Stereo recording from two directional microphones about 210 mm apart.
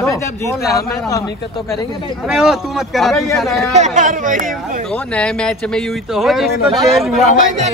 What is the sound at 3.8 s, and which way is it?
Speech, 40° right (ahead or behind).